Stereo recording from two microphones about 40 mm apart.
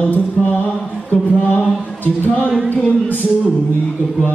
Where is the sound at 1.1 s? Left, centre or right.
Left.